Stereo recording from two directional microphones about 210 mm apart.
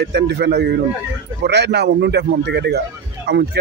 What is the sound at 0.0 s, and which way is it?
Speech, 50° right (ahead or behind).